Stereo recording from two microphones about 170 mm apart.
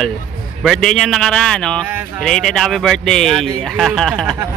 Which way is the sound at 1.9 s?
10° right (ahead or behind).